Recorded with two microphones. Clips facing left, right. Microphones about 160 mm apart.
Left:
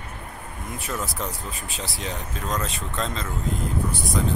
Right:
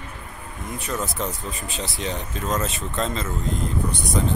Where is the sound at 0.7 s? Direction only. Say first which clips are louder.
Right 3 dB; centre (ahead or behind).